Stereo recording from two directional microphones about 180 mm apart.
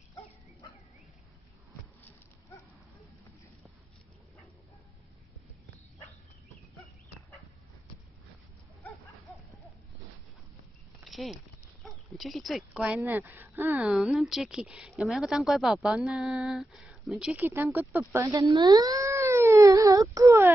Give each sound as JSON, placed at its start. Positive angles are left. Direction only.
{"t": 0.1, "sound": "bow-wow", "side_deg": 25}
{"t": 8.8, "sound": "dog", "side_deg": 0}
{"t": 11.1, "sound": "a sound", "side_deg": 0}
{"t": 11.8, "sound": "speech", "side_deg": 0}
{"t": 13.8, "sound": "a woman's voice", "side_deg": 0}
{"t": 18.1, "sound": "a sound", "side_deg": -20}